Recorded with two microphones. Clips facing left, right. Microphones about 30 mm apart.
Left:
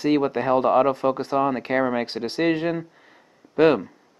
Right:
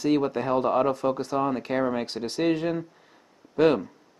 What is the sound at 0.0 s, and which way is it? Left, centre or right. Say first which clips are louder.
Speech: left 3 dB; left.